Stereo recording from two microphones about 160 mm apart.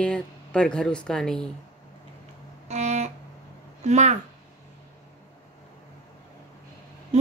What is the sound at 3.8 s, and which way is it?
Speech, 45° right (ahead or behind).